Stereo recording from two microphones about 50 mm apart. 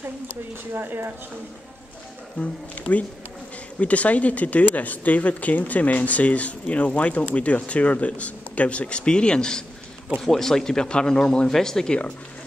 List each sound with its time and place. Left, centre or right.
0.7 s speech: right
2.4 s speech: left; by 12.0 s centre